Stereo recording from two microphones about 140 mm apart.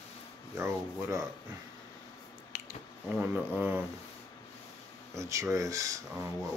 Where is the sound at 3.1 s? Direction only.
10° right (ahead or behind).